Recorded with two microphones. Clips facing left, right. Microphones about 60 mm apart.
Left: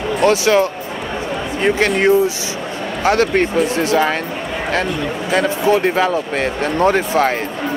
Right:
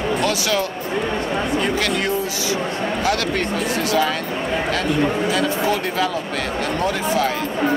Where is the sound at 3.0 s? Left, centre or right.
Left.